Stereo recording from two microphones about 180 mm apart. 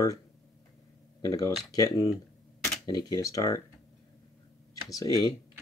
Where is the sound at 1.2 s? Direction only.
20° left (ahead or behind).